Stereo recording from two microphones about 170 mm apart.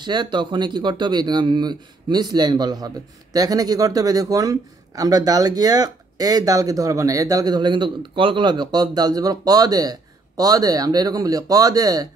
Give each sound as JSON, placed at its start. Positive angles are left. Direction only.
{"t": 0.0, "sound": "a man's voice", "side_deg": -25}